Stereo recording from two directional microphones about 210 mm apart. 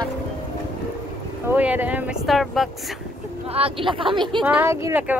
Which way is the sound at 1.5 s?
10° right (ahead or behind).